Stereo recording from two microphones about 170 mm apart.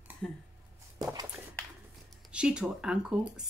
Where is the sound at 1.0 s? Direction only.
20° right (ahead or behind).